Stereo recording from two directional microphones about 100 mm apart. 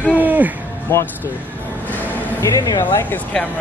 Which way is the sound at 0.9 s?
25° left (ahead or behind).